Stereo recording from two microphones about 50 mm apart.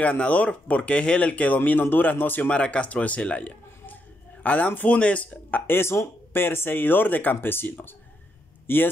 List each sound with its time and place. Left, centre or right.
0.0 s speech: left
1.3 s speech: left
2.5 s a man's voice: left
5.7 s speech: left